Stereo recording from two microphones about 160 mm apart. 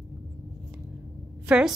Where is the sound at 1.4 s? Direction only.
5° right (ahead or behind).